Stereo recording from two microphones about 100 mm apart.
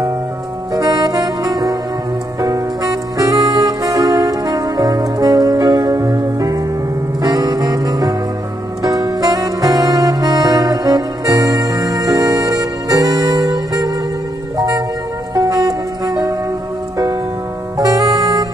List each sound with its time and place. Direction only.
0.7 s music: 40° right (ahead or behind)
2.4 s saxophone: 40° right (ahead or behind)
7.2 s music: 40° right (ahead or behind)
8.8 s saxophone: 35° right (ahead or behind)
15.3 s music: 35° right (ahead or behind)
17.7 s music: 35° right (ahead or behind)